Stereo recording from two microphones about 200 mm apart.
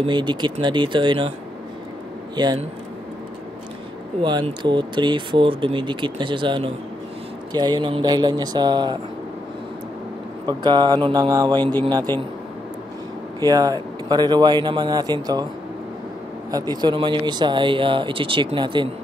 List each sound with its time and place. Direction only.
0.0 s speech: 20° right (ahead or behind)
2.3 s speech: 20° right (ahead or behind)
4.2 s speech: 20° right (ahead or behind)
10.4 s speech: 20° right (ahead or behind)
13.5 s speech: 20° right (ahead or behind)
16.4 s speech: 20° right (ahead or behind)